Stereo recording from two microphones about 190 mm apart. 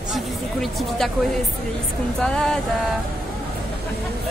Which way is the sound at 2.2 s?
5° left (ahead or behind).